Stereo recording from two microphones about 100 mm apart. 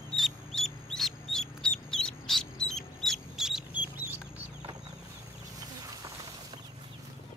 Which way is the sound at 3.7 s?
20° right (ahead or behind).